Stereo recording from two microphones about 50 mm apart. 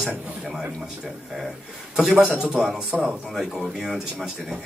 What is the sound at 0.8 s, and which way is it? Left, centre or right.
A man's voice, centre.